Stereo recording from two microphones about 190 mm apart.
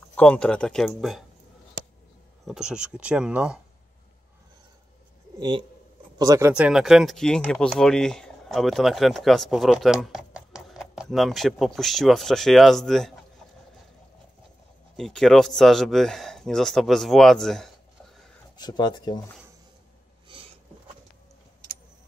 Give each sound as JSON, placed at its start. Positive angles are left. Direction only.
{"t": 0.1, "sound": "speech", "side_deg": 5}
{"t": 2.4, "sound": "speech", "side_deg": -5}
{"t": 5.4, "sound": "speech", "side_deg": -25}
{"t": 6.5, "sound": "speech", "side_deg": -5}
{"t": 15.0, "sound": "speech", "side_deg": 0}
{"t": 18.6, "sound": "speech", "side_deg": 20}